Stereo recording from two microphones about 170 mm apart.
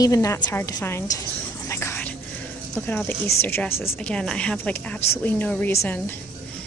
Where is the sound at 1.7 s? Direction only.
15° left (ahead or behind).